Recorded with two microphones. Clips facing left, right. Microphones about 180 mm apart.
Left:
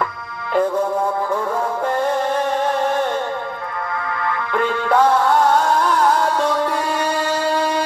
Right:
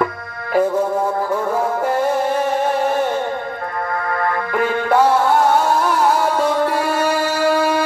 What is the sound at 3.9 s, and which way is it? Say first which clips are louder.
Music: right 4 dB; 50° right (ahead or behind).